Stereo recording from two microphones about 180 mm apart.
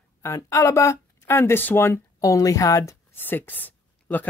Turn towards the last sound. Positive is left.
turn(degrees=10)  # may be behind; listen again after turning